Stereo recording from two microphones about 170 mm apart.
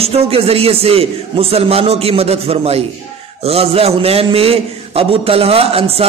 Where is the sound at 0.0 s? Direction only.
35° right (ahead or behind).